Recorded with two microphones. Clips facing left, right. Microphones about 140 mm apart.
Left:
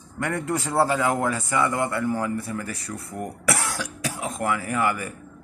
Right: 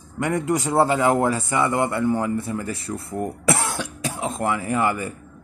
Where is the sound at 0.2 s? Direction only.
15° right (ahead or behind).